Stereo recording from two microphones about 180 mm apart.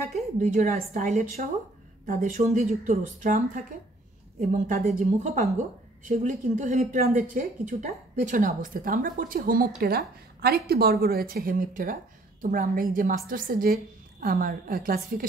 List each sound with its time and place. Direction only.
0.1 s a woman's voice: 45° right (ahead or behind)